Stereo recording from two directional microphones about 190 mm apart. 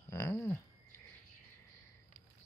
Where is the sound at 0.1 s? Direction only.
15° left (ahead or behind).